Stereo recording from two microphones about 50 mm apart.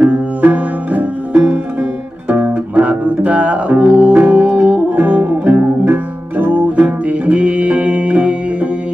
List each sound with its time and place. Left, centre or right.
0.0 s music: right